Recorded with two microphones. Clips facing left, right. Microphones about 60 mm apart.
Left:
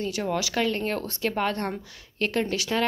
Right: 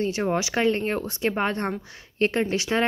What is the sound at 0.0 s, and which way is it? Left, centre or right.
Speech, right.